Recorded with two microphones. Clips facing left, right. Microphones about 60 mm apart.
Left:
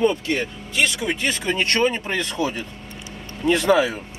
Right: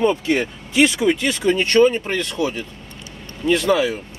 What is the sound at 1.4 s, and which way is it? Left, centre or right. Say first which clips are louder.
Speech: right 9 dB; left.